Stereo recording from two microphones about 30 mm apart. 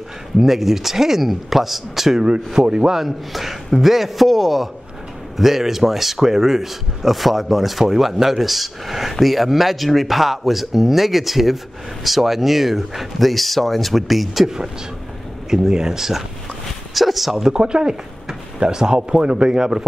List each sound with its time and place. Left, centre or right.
0.4 s speech: centre
2.6 s a man's voice: right
3.0 s speech: centre
14.4 s speech: centre
16.9 s speech: centre
17.5 s speech: right